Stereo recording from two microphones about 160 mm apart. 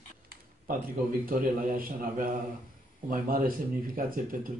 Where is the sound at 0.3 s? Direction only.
70° right (ahead or behind).